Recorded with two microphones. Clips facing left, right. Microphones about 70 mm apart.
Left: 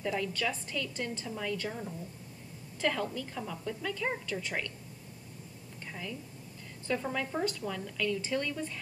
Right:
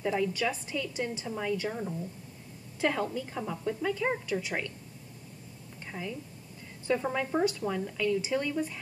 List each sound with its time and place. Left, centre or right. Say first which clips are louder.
0.0 s a woman's voice: right 4 dB; centre
5.9 s a woman's voice: right 3 dB; centre